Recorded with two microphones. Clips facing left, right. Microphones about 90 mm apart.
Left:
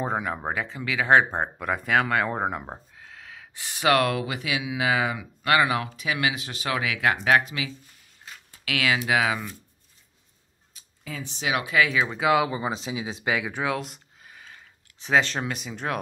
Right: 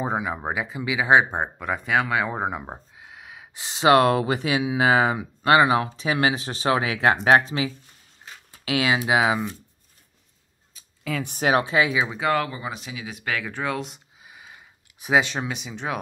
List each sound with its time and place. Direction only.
0.0 s speech: 5° right (ahead or behind); by 9.6 s 25° right (ahead or behind)
11.1 s speech: 65° right (ahead or behind)
11.5 s speech: 30° right (ahead or behind)
12.1 s speech: 5° left (ahead or behind)
12.4 s speech: 25° left (ahead or behind)
13.7 s speech: centre (ahead or behind)
14.2 s a sound: 10° right (ahead or behind)